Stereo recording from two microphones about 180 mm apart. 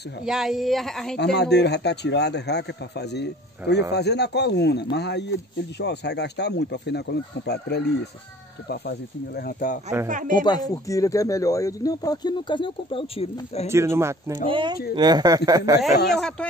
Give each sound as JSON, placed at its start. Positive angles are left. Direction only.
{"t": 0.2, "sound": "speech", "side_deg": -5}
{"t": 1.1, "sound": "a man's voice", "side_deg": 70}
{"t": 10.0, "sound": "speech", "side_deg": -45}
{"t": 10.4, "sound": "speech", "side_deg": 20}
{"t": 13.7, "sound": "speech", "side_deg": -15}
{"t": 14.5, "sound": "speech", "side_deg": -25}
{"t": 16.2, "sound": "speech", "side_deg": 5}